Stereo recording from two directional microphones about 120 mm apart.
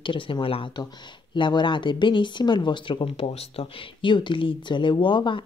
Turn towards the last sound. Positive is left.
turn(degrees=40)  # may be behind; listen again after turning